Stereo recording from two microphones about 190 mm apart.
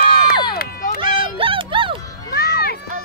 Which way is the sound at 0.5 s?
50° left (ahead or behind).